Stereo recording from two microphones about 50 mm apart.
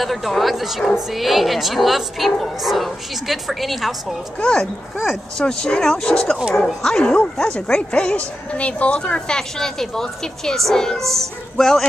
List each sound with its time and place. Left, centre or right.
0.0 s speech: centre
4.4 s a woman's voice: centre